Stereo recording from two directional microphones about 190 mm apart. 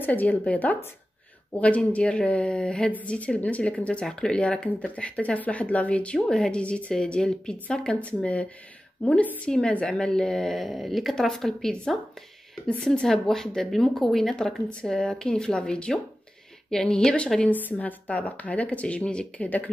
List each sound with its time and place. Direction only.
0.0 s a woman's voice: 10° left (ahead or behind)